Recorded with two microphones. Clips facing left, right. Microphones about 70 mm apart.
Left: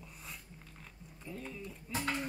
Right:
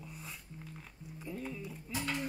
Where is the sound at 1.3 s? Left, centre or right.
Centre.